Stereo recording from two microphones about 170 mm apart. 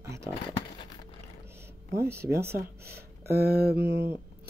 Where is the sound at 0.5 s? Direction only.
30° left (ahead or behind).